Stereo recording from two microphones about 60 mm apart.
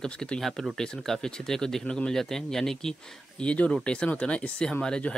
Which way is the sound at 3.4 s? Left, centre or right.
Centre.